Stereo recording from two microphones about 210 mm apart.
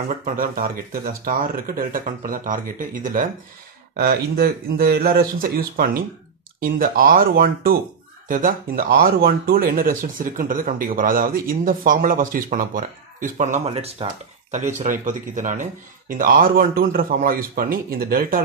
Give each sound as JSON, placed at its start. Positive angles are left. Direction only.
{"t": 0.2, "sound": "speech", "side_deg": -45}